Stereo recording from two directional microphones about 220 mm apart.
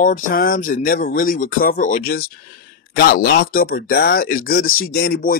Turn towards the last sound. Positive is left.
turn(degrees=40)  # may be behind; listen again after turning